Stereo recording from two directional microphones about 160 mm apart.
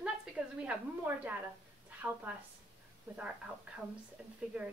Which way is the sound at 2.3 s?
10° right (ahead or behind).